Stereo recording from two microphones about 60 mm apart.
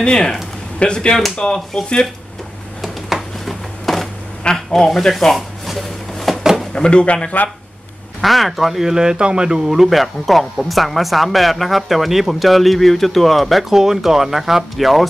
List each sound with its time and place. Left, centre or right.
0.0 s speech: centre
2.8 s a sound: centre
6.7 s speech: centre
8.2 s speech: centre